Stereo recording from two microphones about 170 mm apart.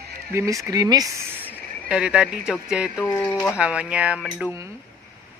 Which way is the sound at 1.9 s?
5° right (ahead or behind).